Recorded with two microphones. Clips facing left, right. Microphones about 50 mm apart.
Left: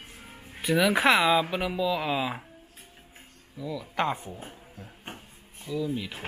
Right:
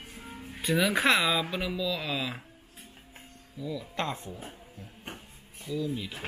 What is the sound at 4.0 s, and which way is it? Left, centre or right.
Speech, left.